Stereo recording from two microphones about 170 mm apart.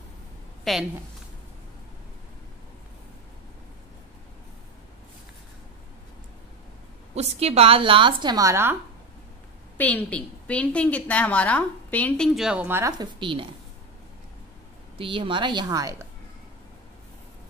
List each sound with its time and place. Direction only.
0.7 s a woman's voice: centre (ahead or behind)
7.2 s a woman's voice: 40° right (ahead or behind); by 8.7 s 15° right (ahead or behind)
9.8 s a woman's voice: 10° left (ahead or behind)
12.4 s a woman's voice: 5° right (ahead or behind)
13.0 s a woman's voice: 30° right (ahead or behind)
15.0 s a woman's voice: 30° right (ahead or behind)